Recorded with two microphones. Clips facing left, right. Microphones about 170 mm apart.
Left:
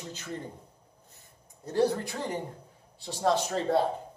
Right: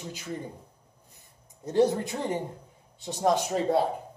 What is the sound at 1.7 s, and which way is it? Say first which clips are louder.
A man's voice: right 3 dB; 20° right (ahead or behind).